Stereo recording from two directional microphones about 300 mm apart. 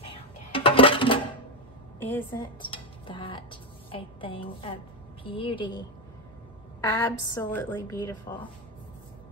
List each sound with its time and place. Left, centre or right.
0.0 s coin: centre
2.0 s a woman's voice: centre